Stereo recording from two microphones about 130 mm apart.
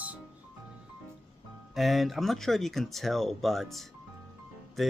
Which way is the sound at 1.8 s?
Centre (ahead or behind).